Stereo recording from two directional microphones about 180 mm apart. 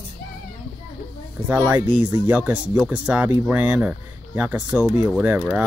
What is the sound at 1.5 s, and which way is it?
Speech, 10° right (ahead or behind).